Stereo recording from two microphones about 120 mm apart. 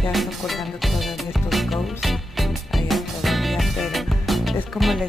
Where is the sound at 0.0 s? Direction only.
Centre (ahead or behind).